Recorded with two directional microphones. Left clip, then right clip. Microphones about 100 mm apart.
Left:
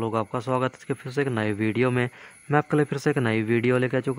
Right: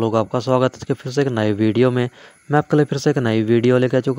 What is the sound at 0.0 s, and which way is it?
Speech, 55° right (ahead or behind).